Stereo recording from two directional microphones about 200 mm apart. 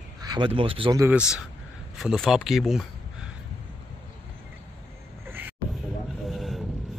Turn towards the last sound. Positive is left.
turn(degrees=0)  # may be behind; listen again after turning